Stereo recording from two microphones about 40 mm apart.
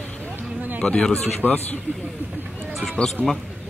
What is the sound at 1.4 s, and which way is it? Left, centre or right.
Speech, right.